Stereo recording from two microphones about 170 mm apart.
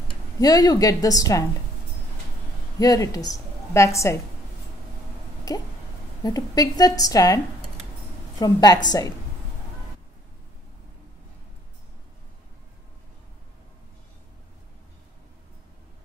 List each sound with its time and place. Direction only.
0.4 s a woman's voice: 20° left (ahead or behind)
2.8 s a woman's voice: 20° left (ahead or behind)
5.5 s a sound: 20° left (ahead or behind)
6.2 s a woman's voice: 20° left (ahead or behind)
8.4 s a woman's voice: 20° left (ahead or behind)